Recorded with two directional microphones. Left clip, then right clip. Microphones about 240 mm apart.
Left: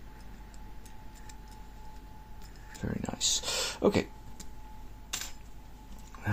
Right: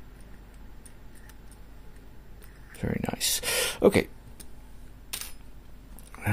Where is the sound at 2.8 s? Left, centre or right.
Right.